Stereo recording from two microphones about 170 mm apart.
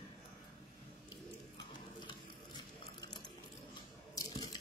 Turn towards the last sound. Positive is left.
turn(degrees=25)  # may be behind; listen again after turning